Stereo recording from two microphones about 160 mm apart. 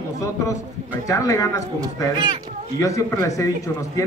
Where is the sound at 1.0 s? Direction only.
20° left (ahead or behind).